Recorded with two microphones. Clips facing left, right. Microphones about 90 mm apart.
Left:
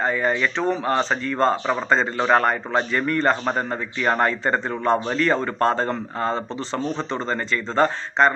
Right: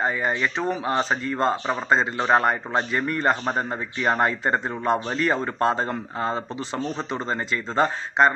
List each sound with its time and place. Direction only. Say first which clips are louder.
0.1 s a man's voice: left 3 dB; 25° right (ahead or behind)
0.8 s a man's voice: left 2 dB; 15° right (ahead or behind)
2.2 s a man's voice: left 2 dB; 20° right (ahead or behind)